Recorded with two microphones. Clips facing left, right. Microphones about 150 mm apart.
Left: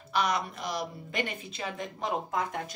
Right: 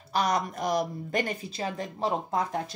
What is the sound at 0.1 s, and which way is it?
Speech, 40° right (ahead or behind).